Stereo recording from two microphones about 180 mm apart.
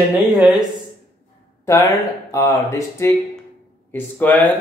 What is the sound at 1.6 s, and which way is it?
Speech, 15° left (ahead or behind).